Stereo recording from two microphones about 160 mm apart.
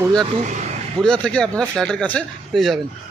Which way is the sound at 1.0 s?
5° left (ahead or behind).